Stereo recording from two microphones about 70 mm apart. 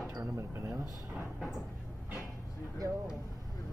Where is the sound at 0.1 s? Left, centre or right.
Right.